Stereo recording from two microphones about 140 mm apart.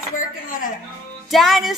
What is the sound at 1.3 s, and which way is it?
Speech, centre (ahead or behind).